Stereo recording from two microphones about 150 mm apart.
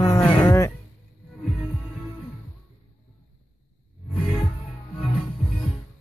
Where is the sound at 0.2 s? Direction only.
15° left (ahead or behind).